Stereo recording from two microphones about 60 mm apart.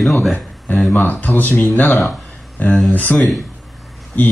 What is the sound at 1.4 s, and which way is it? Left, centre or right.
Speech, centre.